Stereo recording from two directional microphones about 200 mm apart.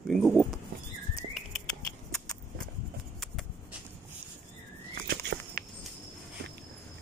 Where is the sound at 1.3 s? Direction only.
Centre (ahead or behind).